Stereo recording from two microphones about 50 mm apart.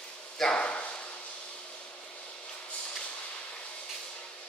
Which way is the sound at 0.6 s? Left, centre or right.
Left.